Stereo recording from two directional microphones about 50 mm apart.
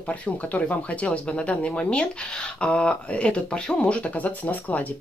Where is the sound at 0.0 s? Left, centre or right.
Left.